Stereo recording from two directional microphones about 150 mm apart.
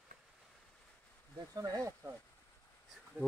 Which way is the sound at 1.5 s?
25° right (ahead or behind).